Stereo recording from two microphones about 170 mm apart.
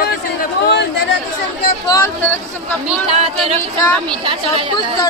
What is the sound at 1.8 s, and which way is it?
Speech, 20° left (ahead or behind).